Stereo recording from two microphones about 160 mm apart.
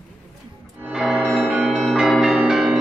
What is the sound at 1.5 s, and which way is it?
Change ringing, 5° right (ahead or behind).